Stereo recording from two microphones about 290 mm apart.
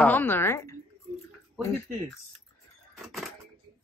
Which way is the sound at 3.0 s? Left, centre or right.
Centre.